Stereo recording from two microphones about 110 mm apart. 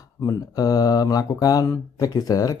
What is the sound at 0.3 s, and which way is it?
Speech, 35° left (ahead or behind).